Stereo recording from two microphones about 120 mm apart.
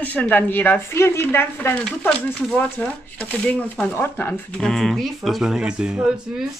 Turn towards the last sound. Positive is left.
turn(degrees=-5)  # may be behind; listen again after turning